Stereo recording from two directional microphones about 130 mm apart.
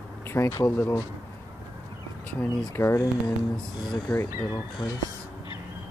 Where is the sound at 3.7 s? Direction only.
35° left (ahead or behind).